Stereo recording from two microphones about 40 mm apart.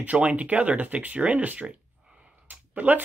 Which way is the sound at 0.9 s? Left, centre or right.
Right.